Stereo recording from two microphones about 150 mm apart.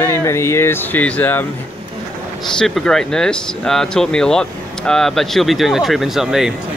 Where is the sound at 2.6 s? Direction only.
5° left (ahead or behind).